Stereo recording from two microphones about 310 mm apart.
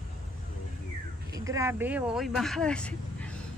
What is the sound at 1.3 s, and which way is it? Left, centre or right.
Speech, centre.